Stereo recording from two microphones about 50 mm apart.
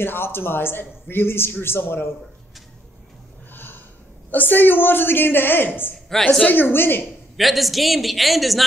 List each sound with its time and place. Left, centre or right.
0.0 s a man's voice: left
4.3 s a man's voice: left
6.1 s a woman's voice: centre
6.4 s a man's voice: left
7.3 s a man's voice: centre